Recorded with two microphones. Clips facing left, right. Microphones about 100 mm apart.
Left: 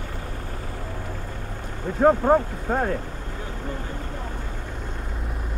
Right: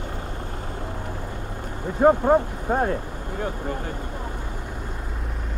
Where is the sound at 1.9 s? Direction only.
15° right (ahead or behind).